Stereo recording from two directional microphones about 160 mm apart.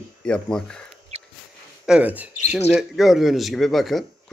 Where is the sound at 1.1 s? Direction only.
40° right (ahead or behind).